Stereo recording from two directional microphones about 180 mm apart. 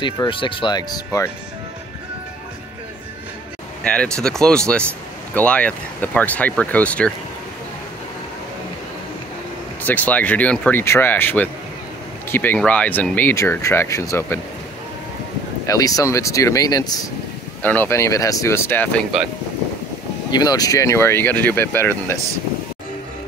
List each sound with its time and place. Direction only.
0.0 s speech: 25° left (ahead or behind)
3.8 s speech: 5° left (ahead or behind)
9.8 s speech: 10° left (ahead or behind)
15.6 s speech: 20° left (ahead or behind)
17.6 s speech: 10° left (ahead or behind)
20.2 s speech: 20° left (ahead or behind)